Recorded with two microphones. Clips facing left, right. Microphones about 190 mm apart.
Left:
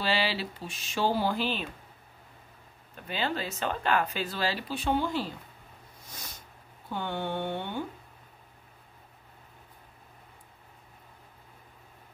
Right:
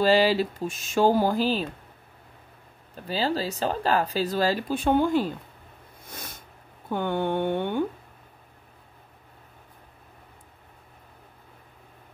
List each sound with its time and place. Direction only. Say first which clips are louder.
0.0 s speech: right 10 dB; 40° right (ahead or behind)
3.1 s speech: right 5 dB; 35° right (ahead or behind); by 5.3 s 50° right (ahead or behind)
6.0 s a sound: right 6 dB; 55° right (ahead or behind)
6.9 s speech: right 7 dB; 50° right (ahead or behind)